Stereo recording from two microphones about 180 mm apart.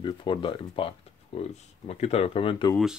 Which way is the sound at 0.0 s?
25° left (ahead or behind).